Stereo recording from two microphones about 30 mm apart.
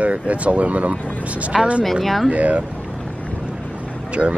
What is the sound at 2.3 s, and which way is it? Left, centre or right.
Speech, right.